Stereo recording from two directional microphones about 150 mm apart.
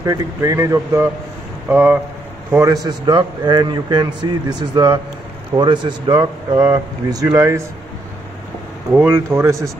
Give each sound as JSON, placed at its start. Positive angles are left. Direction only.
{"t": 0.0, "sound": "a man's voice", "side_deg": -20}
{"t": 8.9, "sound": "speech", "side_deg": -15}